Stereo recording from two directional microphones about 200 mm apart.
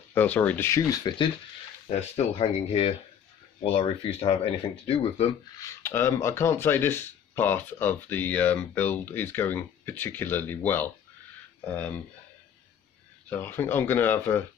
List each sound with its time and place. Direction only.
0.1 s speech: 10° left (ahead or behind); by 5.3 s 30° left (ahead or behind)
5.6 s speech: 10° left (ahead or behind)
13.3 s speech: 10° left (ahead or behind)